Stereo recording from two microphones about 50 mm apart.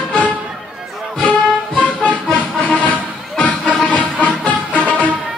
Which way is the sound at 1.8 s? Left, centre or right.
Left.